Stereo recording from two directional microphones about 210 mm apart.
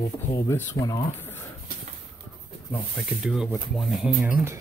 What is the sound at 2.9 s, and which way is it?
Speech, centre (ahead or behind).